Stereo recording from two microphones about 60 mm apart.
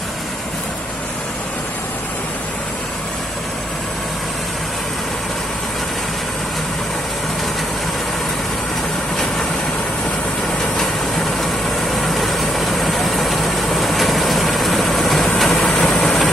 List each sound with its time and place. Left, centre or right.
10.8 s vehicle: centre